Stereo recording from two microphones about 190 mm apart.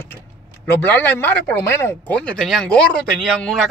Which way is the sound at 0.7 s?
10° left (ahead or behind).